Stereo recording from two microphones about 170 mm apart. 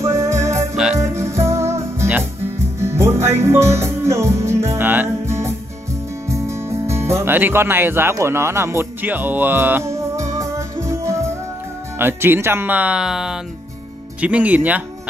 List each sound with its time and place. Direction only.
0.0 s music: 20° right (ahead or behind)
7.2 s a man's voice: 10° right (ahead or behind)
10.3 s music: 15° right (ahead or behind)
12.0 s a man's voice: 15° right (ahead or behind)